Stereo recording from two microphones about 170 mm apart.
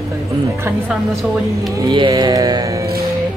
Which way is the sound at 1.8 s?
25° right (ahead or behind).